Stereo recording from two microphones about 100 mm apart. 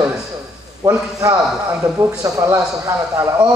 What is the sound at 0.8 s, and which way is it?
A man's voice, 35° right (ahead or behind).